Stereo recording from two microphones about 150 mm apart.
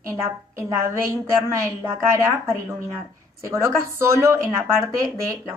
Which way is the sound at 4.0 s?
20° right (ahead or behind).